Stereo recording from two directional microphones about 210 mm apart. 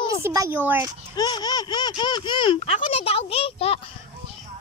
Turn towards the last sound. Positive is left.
turn(degrees=30)  # may be behind; listen again after turning